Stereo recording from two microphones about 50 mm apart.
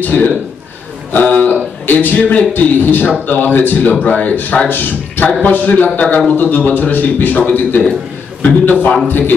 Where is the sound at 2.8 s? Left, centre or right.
Left.